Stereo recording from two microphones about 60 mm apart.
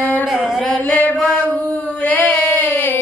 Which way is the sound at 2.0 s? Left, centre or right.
Left.